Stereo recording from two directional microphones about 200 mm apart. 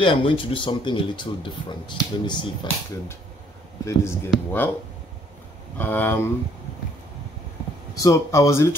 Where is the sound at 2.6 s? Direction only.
20° left (ahead or behind).